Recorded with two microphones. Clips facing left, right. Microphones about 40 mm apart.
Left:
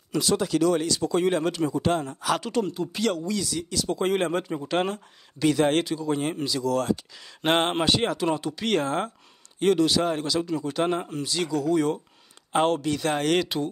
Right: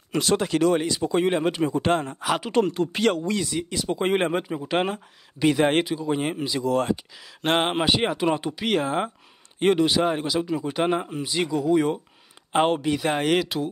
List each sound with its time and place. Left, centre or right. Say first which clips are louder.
0.1 s speech: right 1 dB; right
0.7 s speech: right 1 dB; right
1.8 s speech: right 2 dB; right
2.2 s speech: left 2 dB; centre
2.6 s speech: right 5 dB; right
2.9 s speech: right 3 dB; right
7.2 s speech: even; centre; by 8.6 s right
8.6 s speech: right 1 dB; centre
9.6 s speech: right 1 dB; right
13.4 s speech: right 1 dB; centre